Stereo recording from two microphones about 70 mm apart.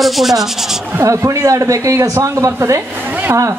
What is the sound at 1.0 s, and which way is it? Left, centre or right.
Speech, right.